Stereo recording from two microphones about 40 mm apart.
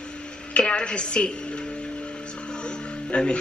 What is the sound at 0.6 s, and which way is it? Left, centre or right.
Speech, left.